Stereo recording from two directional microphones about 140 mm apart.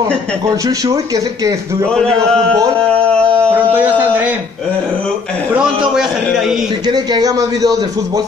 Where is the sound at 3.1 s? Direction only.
10° left (ahead or behind).